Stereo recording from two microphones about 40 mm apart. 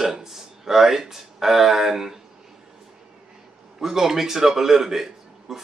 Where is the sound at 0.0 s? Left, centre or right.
Centre.